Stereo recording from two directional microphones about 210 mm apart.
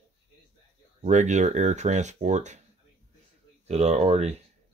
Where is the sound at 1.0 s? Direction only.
35° right (ahead or behind).